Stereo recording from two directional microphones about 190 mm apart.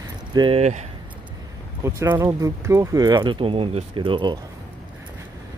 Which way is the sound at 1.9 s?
15° right (ahead or behind).